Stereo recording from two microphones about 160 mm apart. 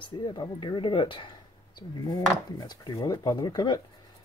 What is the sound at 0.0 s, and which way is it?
Speech, 30° left (ahead or behind).